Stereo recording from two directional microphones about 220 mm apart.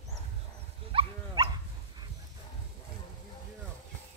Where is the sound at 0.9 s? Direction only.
20° right (ahead or behind).